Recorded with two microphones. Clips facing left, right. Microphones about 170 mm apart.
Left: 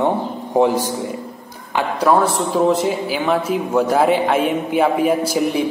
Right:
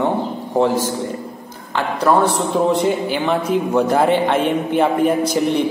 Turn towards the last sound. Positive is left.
turn(degrees=5)  # may be behind; listen again after turning